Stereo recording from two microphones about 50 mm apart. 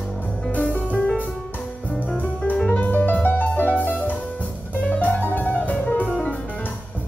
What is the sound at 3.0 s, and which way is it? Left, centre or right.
Music, left.